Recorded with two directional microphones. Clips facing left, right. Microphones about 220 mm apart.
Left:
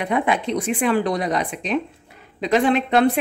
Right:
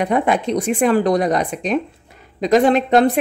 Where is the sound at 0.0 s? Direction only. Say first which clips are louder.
Right 4 dB; 40° right (ahead or behind).